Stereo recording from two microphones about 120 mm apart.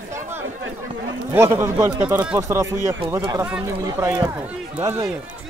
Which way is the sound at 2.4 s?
25° right (ahead or behind).